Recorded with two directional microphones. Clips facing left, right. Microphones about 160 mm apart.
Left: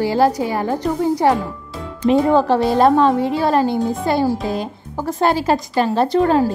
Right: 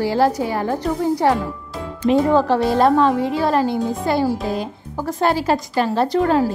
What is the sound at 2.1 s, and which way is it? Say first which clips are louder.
Speech: left 1 dB; 30° left (ahead or behind).